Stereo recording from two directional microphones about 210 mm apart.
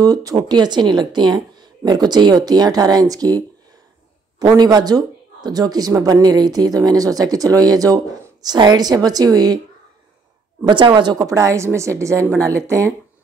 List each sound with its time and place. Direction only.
0.0 s speech: 15° right (ahead or behind)
10.6 s speech: 20° right (ahead or behind)